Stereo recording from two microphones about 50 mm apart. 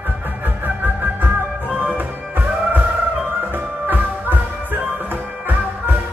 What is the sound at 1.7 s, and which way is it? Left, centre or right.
Music, right.